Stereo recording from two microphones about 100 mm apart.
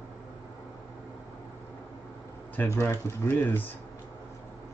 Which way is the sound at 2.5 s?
25° left (ahead or behind).